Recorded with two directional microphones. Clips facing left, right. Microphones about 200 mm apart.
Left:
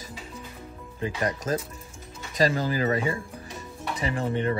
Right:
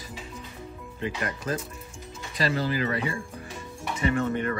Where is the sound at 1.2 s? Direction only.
40° left (ahead or behind).